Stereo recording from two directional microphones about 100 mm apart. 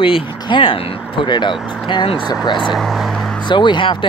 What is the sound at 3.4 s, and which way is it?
Speech, 50° left (ahead or behind).